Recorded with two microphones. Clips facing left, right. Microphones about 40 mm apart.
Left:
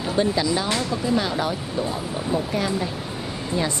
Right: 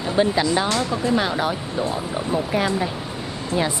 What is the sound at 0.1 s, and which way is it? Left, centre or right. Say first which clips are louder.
A woman's voice: right 3 dB; right.